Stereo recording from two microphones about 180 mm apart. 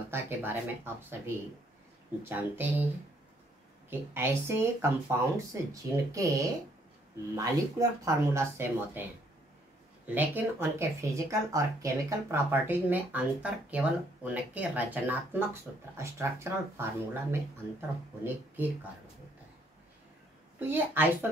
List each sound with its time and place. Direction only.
0.1 s speech: 10° right (ahead or behind)
3.9 s speech: 10° right (ahead or behind)
10.0 s speech: 10° right (ahead or behind)
16.0 s speech: 15° right (ahead or behind)
20.5 s speech: 10° right (ahead or behind)